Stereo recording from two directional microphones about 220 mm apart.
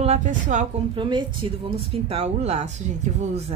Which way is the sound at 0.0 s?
30° right (ahead or behind).